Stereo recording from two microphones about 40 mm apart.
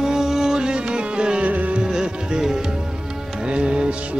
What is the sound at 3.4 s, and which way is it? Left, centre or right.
Music, right.